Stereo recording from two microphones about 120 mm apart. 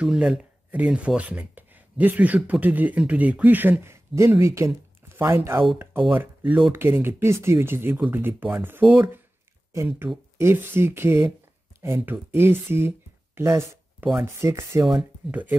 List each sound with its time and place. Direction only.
0.0 s speech: 5° right (ahead or behind); by 14.9 s 25° right (ahead or behind)